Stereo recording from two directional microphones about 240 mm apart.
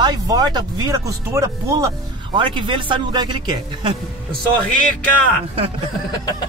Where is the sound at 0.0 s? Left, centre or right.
Centre.